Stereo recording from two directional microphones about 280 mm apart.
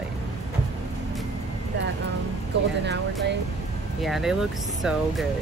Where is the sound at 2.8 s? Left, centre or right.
Right.